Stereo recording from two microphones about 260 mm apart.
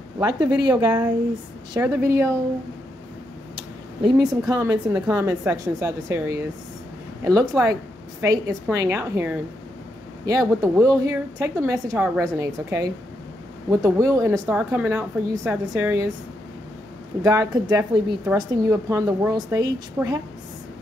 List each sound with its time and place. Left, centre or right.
0.2 s a woman's voice: centre
4.5 s a woman's voice: centre
17.2 s a woman's voice: centre